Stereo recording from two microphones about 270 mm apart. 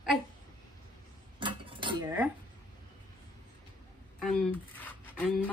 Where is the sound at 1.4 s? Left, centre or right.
Centre.